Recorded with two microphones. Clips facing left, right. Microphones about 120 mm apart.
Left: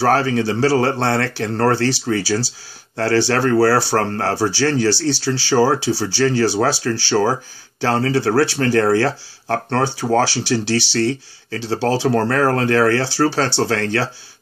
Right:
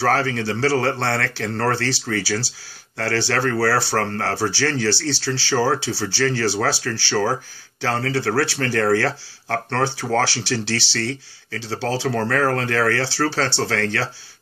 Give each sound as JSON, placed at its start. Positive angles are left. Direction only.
{"t": 0.1, "sound": "speech", "side_deg": 20}
{"t": 3.9, "sound": "speech", "side_deg": 30}